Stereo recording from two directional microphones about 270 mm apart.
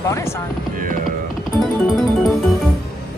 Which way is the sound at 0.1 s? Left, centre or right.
Centre.